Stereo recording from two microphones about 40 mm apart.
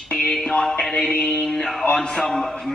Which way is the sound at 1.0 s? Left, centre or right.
Left.